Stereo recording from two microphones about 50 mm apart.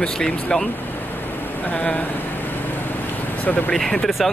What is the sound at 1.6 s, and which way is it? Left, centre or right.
Speech, left.